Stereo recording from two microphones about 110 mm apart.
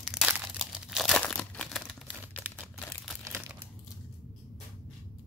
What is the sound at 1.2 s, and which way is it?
Crumpling, 10° left (ahead or behind).